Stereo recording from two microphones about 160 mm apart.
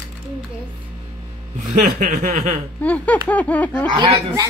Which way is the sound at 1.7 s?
50° right (ahead or behind).